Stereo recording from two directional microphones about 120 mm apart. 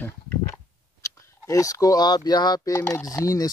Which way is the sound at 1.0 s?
25° left (ahead or behind).